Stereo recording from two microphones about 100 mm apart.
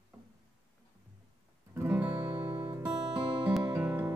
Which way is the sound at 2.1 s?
40° right (ahead or behind).